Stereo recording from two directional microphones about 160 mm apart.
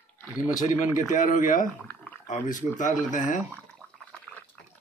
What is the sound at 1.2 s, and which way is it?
Speech, 55° left (ahead or behind).